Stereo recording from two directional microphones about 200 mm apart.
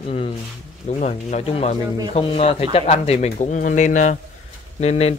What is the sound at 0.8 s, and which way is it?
Speech, 35° left (ahead or behind).